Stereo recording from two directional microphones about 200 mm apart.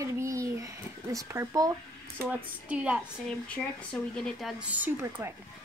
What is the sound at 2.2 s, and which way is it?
Speech, 5° right (ahead or behind).